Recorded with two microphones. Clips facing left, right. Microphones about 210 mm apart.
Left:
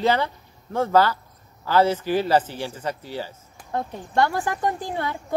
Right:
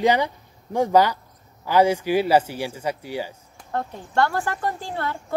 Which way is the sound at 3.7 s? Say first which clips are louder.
Even; 15° left (ahead or behind).